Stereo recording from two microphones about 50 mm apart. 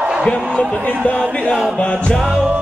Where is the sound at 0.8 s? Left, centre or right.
Left.